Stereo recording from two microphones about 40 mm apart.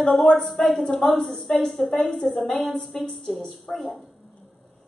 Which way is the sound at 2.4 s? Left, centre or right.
Centre.